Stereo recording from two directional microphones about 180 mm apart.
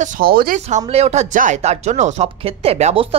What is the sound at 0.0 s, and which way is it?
Speech, 55° right (ahead or behind).